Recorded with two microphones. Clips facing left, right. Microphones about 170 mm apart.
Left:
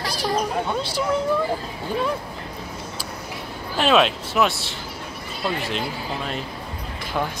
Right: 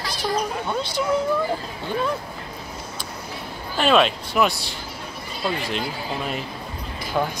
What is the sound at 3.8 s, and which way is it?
Speech, centre (ahead or behind).